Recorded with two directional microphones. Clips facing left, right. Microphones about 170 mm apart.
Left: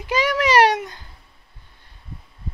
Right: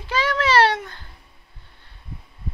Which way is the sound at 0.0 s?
15° left (ahead or behind).